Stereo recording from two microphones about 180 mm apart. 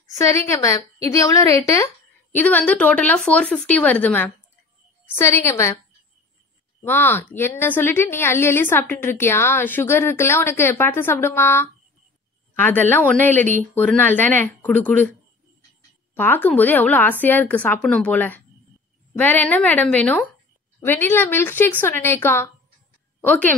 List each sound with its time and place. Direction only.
0.2 s a woman's voice: 15° left (ahead or behind)
6.8 s a woman's voice: 10° left (ahead or behind)
16.2 s a woman's voice: 10° left (ahead or behind)